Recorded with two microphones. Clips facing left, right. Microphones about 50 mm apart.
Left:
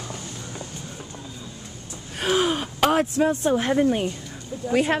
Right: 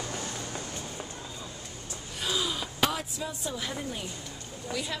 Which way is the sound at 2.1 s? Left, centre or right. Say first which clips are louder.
Left 10 dB; left.